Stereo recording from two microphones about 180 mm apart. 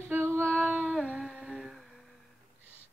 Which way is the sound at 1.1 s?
5° right (ahead or behind).